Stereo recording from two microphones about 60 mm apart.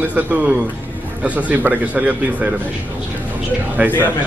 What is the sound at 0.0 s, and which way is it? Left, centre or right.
Speech, right.